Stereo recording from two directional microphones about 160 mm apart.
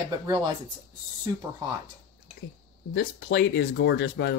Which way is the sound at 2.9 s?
90° left.